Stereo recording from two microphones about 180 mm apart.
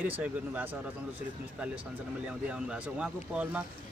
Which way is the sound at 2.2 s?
5° right (ahead or behind).